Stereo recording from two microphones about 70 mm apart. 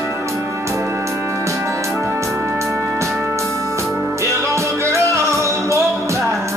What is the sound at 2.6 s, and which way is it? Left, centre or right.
Music, right.